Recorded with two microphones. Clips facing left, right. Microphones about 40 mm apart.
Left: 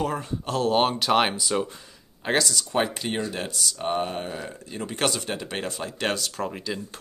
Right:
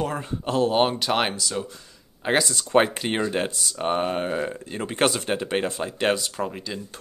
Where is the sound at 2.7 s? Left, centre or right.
Right; by 6.5 s centre.